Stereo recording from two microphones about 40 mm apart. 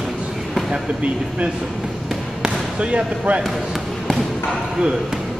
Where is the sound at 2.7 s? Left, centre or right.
Right.